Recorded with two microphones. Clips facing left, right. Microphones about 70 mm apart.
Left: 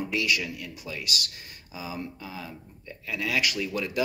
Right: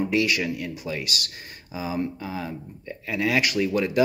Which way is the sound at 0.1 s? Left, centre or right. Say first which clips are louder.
Right 5 dB; right.